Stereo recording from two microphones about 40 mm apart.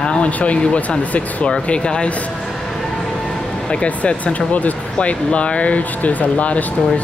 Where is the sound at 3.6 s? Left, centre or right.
Left.